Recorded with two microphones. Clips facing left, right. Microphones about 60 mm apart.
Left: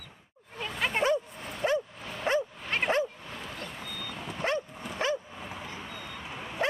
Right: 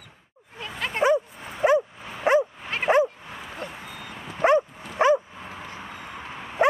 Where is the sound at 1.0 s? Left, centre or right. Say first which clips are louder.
Right 11 dB; centre.